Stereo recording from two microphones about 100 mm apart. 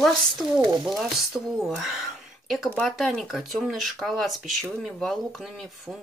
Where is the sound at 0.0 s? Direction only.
Centre (ahead or behind).